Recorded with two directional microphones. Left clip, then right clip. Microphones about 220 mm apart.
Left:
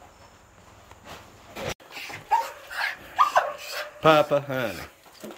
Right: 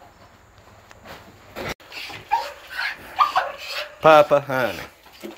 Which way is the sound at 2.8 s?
10° left (ahead or behind).